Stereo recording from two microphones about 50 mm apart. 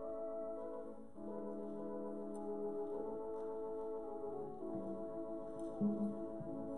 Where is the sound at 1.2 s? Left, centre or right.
Centre.